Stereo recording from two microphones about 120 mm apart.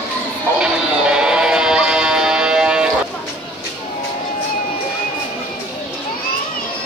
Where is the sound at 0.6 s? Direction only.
5° right (ahead or behind).